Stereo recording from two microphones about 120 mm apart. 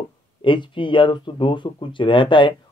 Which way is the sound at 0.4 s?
45° left (ahead or behind).